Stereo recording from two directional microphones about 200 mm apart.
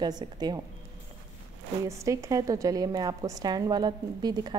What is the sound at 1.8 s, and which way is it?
A woman's voice, 15° right (ahead or behind).